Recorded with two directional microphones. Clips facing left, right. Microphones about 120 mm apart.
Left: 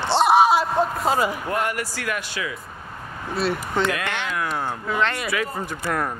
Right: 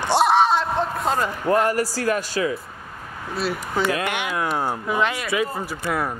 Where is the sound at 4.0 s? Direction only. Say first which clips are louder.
Right 2 dB; 15° right (ahead or behind).